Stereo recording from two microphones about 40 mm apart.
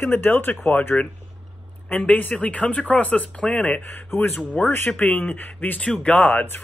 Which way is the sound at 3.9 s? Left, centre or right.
Left.